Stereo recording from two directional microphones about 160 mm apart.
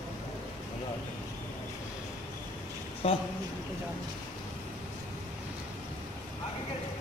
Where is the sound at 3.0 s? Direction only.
40° left (ahead or behind).